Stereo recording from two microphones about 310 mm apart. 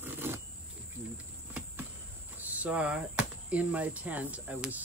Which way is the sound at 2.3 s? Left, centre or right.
Centre.